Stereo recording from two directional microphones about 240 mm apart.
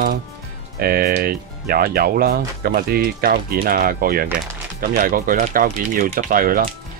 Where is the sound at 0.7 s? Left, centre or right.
Right.